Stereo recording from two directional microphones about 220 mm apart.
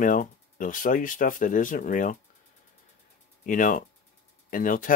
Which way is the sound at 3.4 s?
35° left (ahead or behind).